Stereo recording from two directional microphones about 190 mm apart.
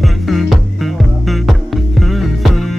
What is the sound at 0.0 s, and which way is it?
Music, centre (ahead or behind).